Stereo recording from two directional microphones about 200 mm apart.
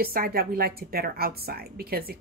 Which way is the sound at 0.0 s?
50° right (ahead or behind).